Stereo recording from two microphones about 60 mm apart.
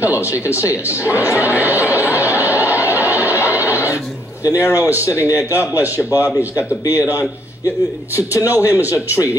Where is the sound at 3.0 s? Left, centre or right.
Right.